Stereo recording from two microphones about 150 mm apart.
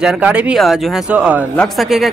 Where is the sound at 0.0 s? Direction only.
10° right (ahead or behind).